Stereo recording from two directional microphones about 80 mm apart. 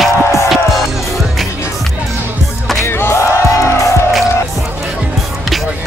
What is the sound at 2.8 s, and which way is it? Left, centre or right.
Music, left.